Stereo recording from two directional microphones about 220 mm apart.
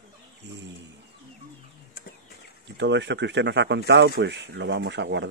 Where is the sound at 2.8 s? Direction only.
50° right (ahead or behind).